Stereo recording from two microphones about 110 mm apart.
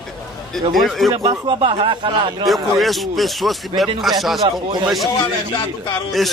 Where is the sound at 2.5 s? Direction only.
Centre (ahead or behind).